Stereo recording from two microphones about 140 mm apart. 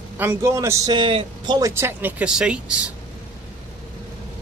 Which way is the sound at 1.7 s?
15° right (ahead or behind).